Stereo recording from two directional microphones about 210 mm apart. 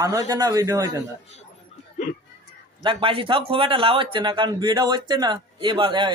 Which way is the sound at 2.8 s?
25° right (ahead or behind).